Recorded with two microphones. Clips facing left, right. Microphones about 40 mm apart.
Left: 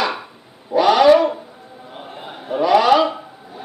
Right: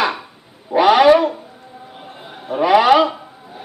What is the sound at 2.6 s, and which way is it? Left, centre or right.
Speech, right.